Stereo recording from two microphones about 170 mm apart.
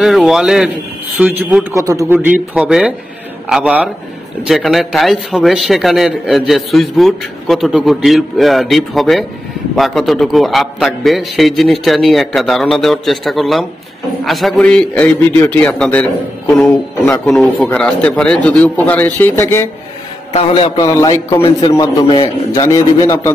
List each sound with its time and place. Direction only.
0.0 s a man's voice: centre (ahead or behind); by 2.1 s 20° right (ahead or behind)
2.2 s a man's voice: 5° right (ahead or behind); by 19.7 s 15° left (ahead or behind)
20.3 s a man's voice: 30° left (ahead or behind)